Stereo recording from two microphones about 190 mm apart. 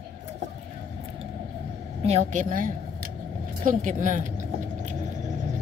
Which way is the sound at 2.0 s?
35° right (ahead or behind).